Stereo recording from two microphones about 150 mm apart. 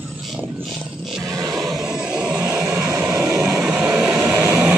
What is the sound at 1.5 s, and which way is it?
Vehicle, 5° right (ahead or behind).